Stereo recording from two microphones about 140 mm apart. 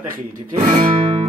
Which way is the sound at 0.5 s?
40° right (ahead or behind).